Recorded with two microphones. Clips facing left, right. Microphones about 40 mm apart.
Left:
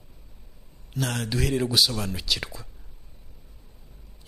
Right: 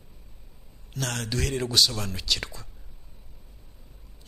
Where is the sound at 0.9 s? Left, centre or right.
Centre.